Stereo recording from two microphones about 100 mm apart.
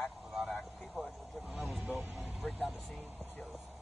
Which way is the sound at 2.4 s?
15° left (ahead or behind).